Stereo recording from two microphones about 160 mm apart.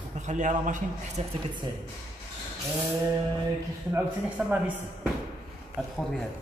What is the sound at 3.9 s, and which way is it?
Speech, 10° right (ahead or behind).